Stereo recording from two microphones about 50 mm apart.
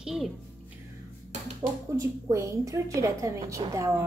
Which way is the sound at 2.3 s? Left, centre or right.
Right.